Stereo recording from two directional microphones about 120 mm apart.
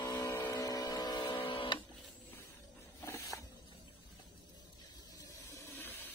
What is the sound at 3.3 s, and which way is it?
Printer, 25° left (ahead or behind).